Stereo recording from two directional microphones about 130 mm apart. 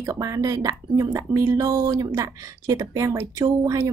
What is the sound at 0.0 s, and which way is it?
Speech, 25° right (ahead or behind).